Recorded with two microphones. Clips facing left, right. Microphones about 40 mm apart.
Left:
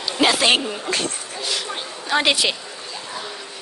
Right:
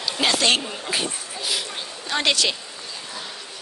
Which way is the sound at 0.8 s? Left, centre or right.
Centre.